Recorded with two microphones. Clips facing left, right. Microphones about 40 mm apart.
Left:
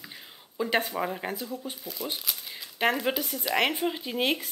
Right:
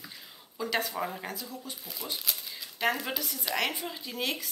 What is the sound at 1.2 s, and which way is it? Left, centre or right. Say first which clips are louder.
Speech: left 5 dB; left.